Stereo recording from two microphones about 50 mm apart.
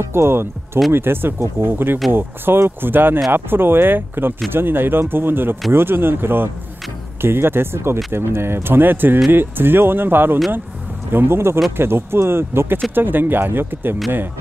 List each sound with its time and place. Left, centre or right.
0.0 s speech: right